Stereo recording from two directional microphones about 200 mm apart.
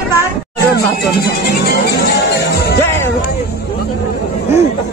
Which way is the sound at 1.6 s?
55° left (ahead or behind).